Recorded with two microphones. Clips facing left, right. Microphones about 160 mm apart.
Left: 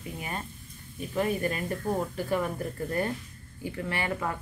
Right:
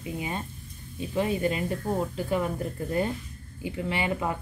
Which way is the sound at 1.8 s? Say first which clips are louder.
Right 1 dB; 5° right (ahead or behind).